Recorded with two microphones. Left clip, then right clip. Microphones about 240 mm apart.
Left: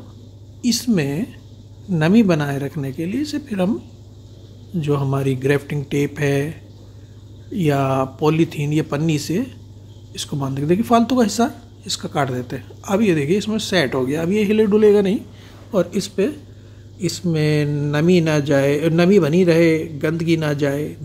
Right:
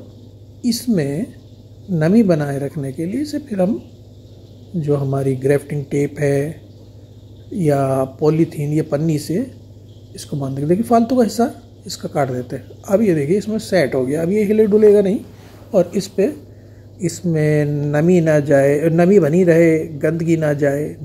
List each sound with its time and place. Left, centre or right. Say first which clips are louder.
0.6 s speech: even; centre
4.7 s speech: right 2 dB; centre
7.5 s a man's voice: right 2 dB; centre